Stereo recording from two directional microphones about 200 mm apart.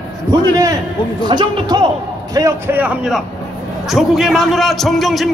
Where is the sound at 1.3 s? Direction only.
20° right (ahead or behind).